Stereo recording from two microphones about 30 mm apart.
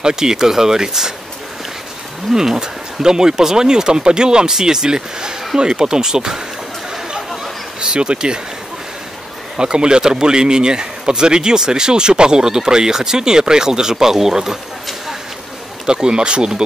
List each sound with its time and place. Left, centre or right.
0.0 s speech: right
2.3 s speech: centre
6.9 s chatter: centre
7.8 s speech: right
9.6 s speech: right
15.9 s speech: right